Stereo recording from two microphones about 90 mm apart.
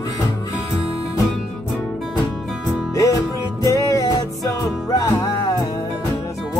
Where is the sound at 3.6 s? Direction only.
40° left (ahead or behind).